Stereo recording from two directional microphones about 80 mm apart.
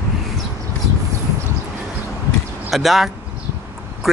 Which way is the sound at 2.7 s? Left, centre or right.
Centre.